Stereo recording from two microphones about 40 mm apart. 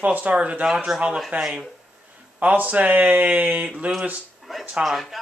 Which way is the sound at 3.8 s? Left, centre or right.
Right.